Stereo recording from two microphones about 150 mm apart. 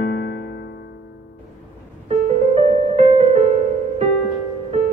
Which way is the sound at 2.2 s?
45° right (ahead or behind).